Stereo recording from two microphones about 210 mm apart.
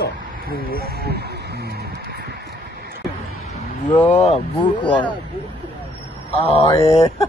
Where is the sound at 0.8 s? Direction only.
50° right (ahead or behind).